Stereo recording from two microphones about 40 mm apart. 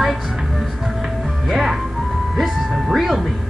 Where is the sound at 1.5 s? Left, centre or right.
Centre.